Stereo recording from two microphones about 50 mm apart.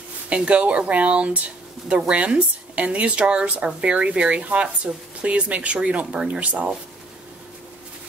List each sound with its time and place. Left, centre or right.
0.3 s speech: right